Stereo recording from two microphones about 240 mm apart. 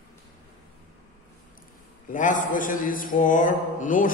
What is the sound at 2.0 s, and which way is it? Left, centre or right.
Mantra, left.